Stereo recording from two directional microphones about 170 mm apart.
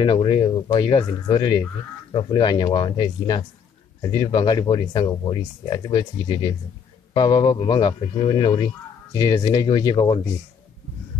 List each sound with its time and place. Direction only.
0.0 s a man's voice: 30° left (ahead or behind)